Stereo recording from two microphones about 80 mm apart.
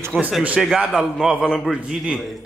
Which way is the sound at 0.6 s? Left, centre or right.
Centre.